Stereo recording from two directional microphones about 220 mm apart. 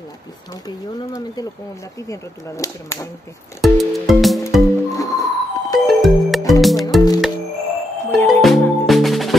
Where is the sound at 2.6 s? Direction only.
15° left (ahead or behind).